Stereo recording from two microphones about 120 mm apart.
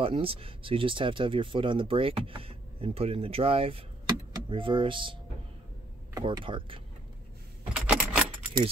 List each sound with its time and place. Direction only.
0.0 s speech: 50° right (ahead or behind)
6.4 s speech: 45° right (ahead or behind)
7.7 s a sound: 10° right (ahead or behind)